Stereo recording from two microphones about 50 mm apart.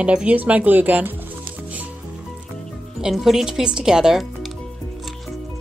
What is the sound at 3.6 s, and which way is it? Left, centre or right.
Speech, centre.